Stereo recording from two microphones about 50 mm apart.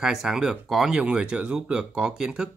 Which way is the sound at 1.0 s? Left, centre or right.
Centre.